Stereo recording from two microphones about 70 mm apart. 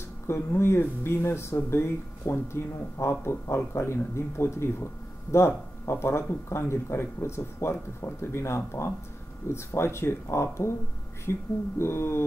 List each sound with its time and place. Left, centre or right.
0.3 s speech: left